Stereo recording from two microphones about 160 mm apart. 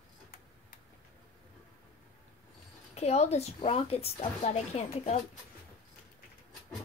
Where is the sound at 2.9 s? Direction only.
45° left (ahead or behind).